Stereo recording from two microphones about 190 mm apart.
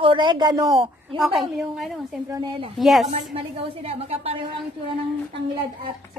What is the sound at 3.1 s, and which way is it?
A woman's voice, 30° right (ahead or behind).